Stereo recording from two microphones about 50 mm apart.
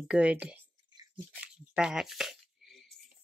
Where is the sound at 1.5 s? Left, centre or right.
Centre.